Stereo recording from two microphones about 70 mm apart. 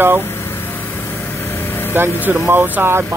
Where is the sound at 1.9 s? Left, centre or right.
Right.